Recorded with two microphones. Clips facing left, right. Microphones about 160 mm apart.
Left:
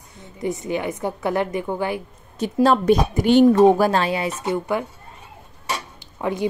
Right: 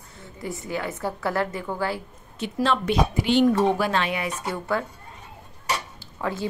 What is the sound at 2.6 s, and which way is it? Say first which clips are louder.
Speech: left 6 dB; 40° left (ahead or behind).